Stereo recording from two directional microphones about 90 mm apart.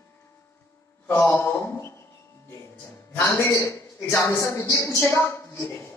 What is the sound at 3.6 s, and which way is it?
A woman's voice, 30° left (ahead or behind).